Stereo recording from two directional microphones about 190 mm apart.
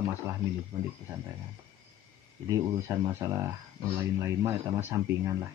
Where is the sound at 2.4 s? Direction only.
15° right (ahead or behind).